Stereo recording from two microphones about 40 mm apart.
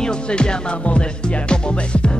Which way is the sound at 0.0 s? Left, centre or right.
Left.